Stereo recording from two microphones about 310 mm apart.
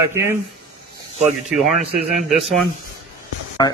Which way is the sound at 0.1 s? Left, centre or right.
Centre.